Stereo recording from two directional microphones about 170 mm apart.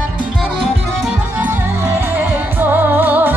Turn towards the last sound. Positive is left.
turn(degrees=-10)  # may be behind; listen again after turning